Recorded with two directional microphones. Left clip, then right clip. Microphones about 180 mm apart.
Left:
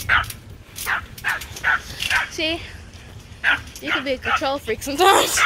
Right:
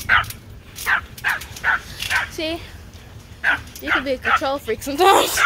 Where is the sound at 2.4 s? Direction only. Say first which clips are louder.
Left 2 dB; 5° right (ahead or behind).